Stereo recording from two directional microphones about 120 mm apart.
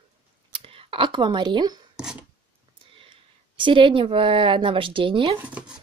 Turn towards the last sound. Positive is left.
turn(degrees=-10)  # may be behind; listen again after turning